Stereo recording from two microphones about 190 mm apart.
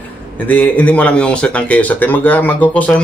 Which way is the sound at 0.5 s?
10° left (ahead or behind).